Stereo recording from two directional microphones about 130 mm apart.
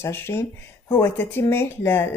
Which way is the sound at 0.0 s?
20° left (ahead or behind).